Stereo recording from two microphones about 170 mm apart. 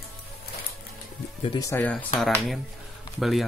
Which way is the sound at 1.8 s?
10° left (ahead or behind).